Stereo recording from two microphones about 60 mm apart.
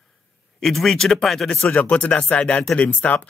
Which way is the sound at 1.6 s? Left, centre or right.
Left.